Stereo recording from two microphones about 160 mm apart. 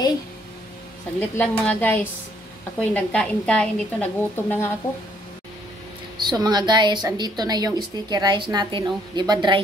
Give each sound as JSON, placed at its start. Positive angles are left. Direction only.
{"t": 1.3, "sound": "a woman's voice", "side_deg": 10}
{"t": 6.1, "sound": "a woman's voice", "side_deg": -25}